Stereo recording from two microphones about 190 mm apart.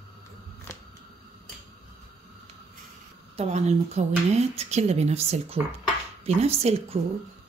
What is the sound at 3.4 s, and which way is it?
Speech, 35° right (ahead or behind).